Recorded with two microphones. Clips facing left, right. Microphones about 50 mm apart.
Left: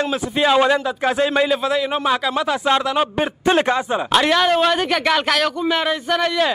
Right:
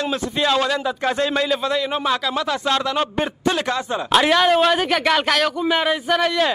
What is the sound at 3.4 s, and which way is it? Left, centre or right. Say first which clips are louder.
Speech: left 6 dB; left.